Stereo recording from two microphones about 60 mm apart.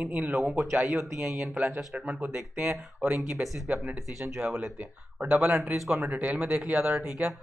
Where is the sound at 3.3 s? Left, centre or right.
Centre.